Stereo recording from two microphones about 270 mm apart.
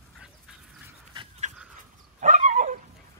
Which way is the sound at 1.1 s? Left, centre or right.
Centre.